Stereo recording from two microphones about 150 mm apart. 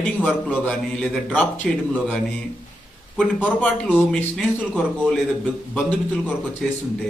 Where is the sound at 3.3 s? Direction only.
5° left (ahead or behind).